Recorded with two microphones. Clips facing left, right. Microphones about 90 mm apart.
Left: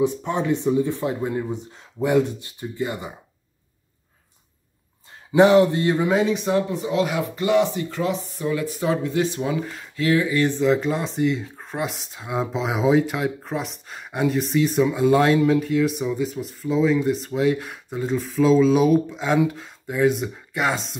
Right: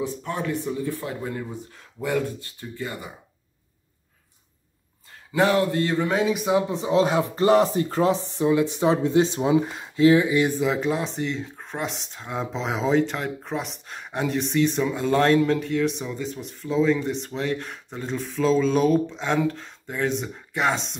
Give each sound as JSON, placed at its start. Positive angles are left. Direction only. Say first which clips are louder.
{"t": 0.0, "sound": "speech", "louder": "left 6 dB", "side_deg": 20}
{"t": 5.3, "sound": "speech", "louder": "left 6 dB", "side_deg": 20}
{"t": 6.0, "sound": "speech", "louder": "left 2 dB", "side_deg": 0}
{"t": 6.7, "sound": "speech", "louder": "right 2 dB", "side_deg": -25}
{"t": 8.5, "sound": "speech", "louder": "right 3 dB", "side_deg": -25}
{"t": 10.6, "sound": "speech", "louder": "left 3 dB", "side_deg": 0}